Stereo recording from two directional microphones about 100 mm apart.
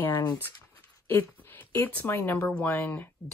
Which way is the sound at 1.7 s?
25° left (ahead or behind).